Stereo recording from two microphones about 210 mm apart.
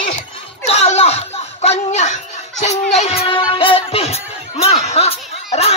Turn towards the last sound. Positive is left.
turn(degrees=30)  # may be behind; listen again after turning